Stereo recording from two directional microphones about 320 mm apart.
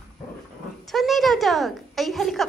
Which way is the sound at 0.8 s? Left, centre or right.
Centre.